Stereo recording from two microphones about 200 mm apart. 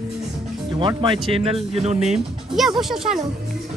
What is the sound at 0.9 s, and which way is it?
Speech, 25° right (ahead or behind).